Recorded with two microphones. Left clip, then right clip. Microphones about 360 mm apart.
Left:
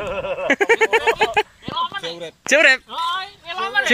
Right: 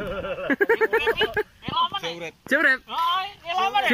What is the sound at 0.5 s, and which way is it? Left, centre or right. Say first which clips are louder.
Speech: left 5 dB; centre.